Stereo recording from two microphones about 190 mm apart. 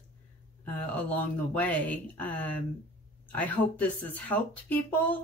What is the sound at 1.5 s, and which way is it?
Speech, 10° left (ahead or behind).